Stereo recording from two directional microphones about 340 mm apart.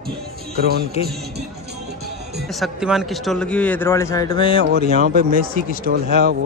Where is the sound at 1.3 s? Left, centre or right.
Right.